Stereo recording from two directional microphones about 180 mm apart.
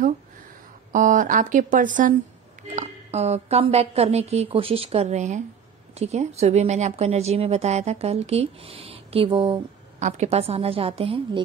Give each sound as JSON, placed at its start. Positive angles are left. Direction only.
{"t": 0.9, "sound": "a woman's voice", "side_deg": -45}
{"t": 9.9, "sound": "a woman's voice", "side_deg": -40}